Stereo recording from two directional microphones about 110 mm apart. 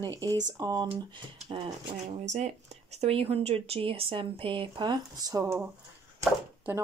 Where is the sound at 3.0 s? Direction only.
65° right (ahead or behind); by 5.6 s 30° right (ahead or behind).